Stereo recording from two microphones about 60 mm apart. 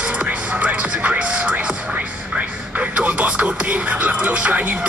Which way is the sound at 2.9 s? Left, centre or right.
Right.